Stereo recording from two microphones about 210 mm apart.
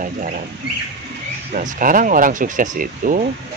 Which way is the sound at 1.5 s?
40° right (ahead or behind).